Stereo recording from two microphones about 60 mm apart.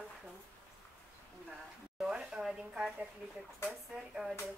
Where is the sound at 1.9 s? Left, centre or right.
Centre.